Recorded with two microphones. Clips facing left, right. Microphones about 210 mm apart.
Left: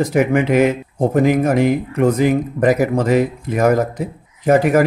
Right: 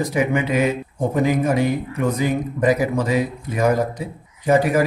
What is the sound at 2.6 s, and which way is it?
Speech, 50° left (ahead or behind).